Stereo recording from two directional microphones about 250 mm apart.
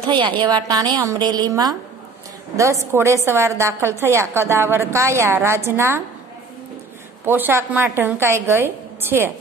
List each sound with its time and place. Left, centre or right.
0.1 s a woman's voice: centre
7.2 s a woman's voice: centre